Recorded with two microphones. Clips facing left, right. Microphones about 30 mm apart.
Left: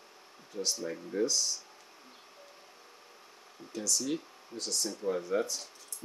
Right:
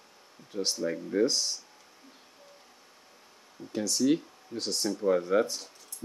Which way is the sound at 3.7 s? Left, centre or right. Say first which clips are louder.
Right 7 dB; right.